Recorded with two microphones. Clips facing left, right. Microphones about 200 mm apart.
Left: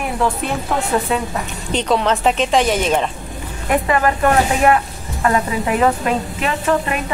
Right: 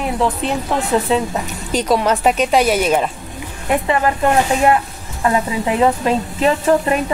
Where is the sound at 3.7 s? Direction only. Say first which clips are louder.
Even; 20° right (ahead or behind).